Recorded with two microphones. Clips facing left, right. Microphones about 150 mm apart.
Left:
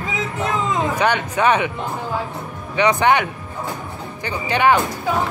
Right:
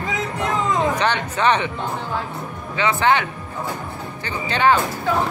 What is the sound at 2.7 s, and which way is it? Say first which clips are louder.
Speech: left 3 dB; 15° left (ahead or behind).